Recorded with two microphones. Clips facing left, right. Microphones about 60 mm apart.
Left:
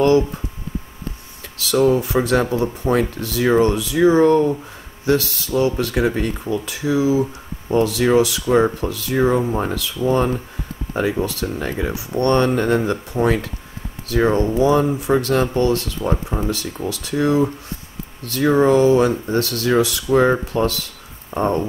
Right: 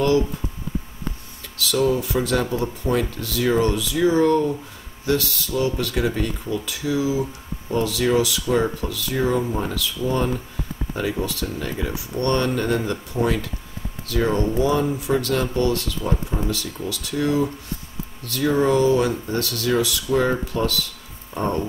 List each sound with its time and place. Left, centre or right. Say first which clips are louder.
1.7 s speech: left 5 dB; left
2.9 s speech: left 3 dB; left
13.2 s speech: left 4 dB; left
14.3 s speech: left 3 dB; left
14.8 s speech: left 4 dB; left